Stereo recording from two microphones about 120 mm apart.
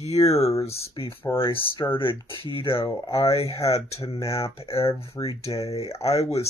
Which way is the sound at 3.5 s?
25° left (ahead or behind).